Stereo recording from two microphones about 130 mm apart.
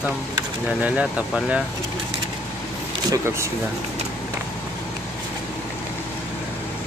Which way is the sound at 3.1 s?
20° right (ahead or behind).